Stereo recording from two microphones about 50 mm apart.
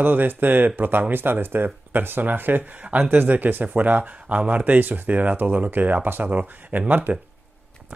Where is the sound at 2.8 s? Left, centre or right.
Right.